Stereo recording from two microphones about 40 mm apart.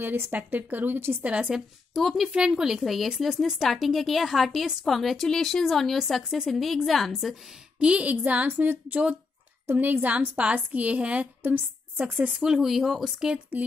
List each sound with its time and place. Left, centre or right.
0.0 s speech: right
0.3 s speech: right
1.2 s a woman's voice: right
2.0 s a woman's voice: centre
2.3 s speech: centre
2.8 s a woman's voice: centre
7.8 s speech: right
8.1 s a woman's voice: right
10.1 s a woman's voice: right
12.0 s speech: right
12.4 s speech: centre
13.5 s speech: right